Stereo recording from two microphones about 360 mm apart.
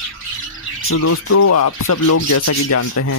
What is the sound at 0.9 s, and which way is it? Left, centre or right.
Speech, left.